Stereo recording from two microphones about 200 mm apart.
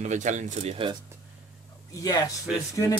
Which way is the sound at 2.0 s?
20° left (ahead or behind).